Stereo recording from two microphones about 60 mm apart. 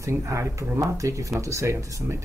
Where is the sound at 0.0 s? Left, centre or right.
Right.